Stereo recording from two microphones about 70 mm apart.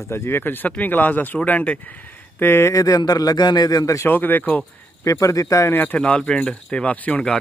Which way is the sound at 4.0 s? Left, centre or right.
Left.